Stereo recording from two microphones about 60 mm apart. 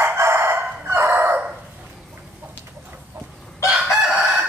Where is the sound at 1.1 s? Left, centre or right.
Right.